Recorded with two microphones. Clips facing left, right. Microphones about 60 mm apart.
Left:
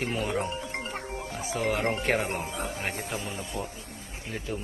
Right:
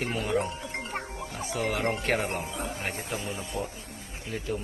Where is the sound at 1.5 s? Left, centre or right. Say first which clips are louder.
Left 1 dB; left.